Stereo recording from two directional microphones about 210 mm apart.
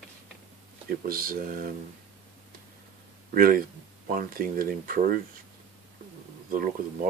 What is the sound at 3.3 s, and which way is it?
Speech, 45° right (ahead or behind).